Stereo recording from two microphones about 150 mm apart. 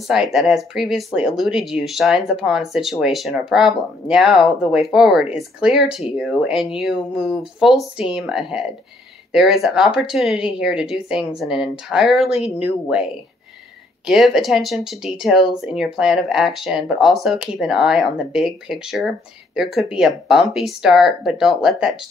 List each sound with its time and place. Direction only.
0.1 s speech: centre (ahead or behind)